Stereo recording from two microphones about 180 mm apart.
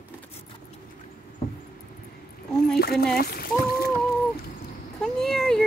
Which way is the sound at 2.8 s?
60° left (ahead or behind).